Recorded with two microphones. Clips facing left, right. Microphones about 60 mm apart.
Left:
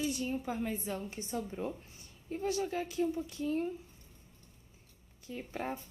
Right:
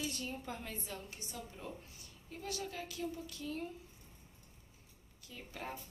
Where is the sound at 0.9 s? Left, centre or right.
Left.